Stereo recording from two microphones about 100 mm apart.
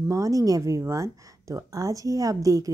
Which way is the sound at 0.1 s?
35° right (ahead or behind).